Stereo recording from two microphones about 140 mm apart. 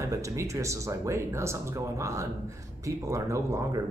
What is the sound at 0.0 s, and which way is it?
Speech, 20° right (ahead or behind).